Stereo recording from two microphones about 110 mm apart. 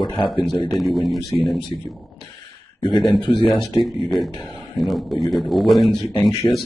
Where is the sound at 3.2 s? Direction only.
45° left (ahead or behind).